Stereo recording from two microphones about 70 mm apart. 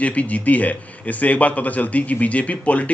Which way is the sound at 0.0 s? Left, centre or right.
Left.